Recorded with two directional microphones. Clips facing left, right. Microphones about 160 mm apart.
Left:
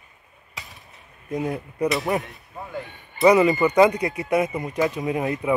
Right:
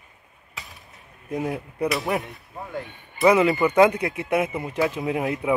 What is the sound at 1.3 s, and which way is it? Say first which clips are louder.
Speech: left 1 dB; 5° right (ahead or behind).